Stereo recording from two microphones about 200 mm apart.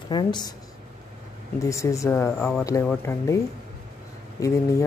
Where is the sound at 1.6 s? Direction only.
15° left (ahead or behind).